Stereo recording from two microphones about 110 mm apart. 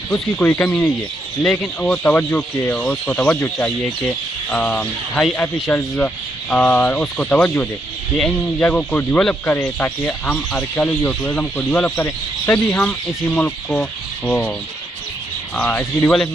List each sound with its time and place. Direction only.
0.1 s speech: 15° left (ahead or behind)
15.5 s speech: 15° left (ahead or behind)